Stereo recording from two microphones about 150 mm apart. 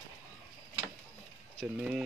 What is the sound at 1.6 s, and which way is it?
Speech, 5° right (ahead or behind).